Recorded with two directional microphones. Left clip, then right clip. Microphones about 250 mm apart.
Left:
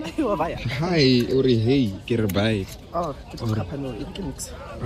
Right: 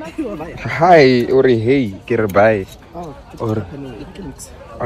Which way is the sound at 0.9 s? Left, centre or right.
Centre.